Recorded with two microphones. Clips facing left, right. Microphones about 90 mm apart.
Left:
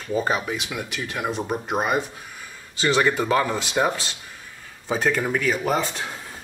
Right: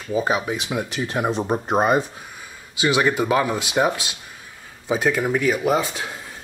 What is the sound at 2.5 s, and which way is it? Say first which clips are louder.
Speech: right 1 dB; 10° right (ahead or behind).